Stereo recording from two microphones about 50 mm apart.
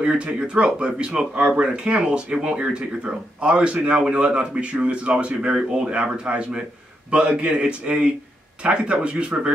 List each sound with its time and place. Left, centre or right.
0.0 s a man's voice: right